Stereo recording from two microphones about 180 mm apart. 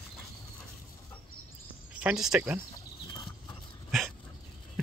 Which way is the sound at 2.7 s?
25° left (ahead or behind).